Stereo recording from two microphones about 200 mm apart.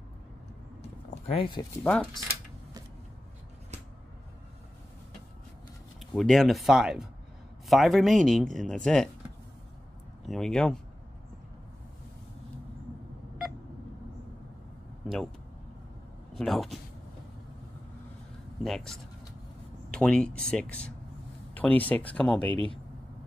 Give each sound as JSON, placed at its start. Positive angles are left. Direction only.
{"t": 1.2, "sound": "speech", "side_deg": 25}
{"t": 1.8, "sound": "speech", "side_deg": 5}
{"t": 5.9, "sound": "speech", "side_deg": 0}
{"t": 10.2, "sound": "speech", "side_deg": 0}
{"t": 15.0, "sound": "vehicle", "side_deg": 0}
{"t": 16.3, "sound": "speech", "side_deg": 0}
{"t": 18.6, "sound": "speech", "side_deg": 0}